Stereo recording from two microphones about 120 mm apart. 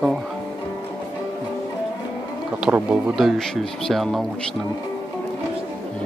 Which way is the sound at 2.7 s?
10° right (ahead or behind).